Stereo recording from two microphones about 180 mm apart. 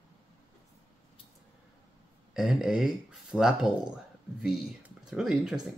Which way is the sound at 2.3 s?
Centre (ahead or behind).